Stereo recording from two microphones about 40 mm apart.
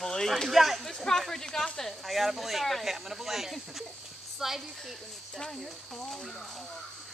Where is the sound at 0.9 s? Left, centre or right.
Centre.